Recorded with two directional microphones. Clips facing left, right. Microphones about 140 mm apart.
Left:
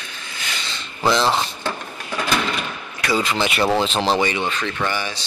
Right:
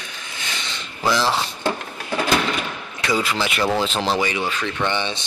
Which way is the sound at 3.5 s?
30° left (ahead or behind).